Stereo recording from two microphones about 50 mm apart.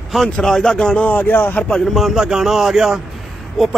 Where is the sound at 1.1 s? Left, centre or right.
Left.